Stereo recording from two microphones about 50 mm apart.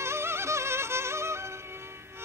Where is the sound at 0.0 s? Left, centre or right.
Right.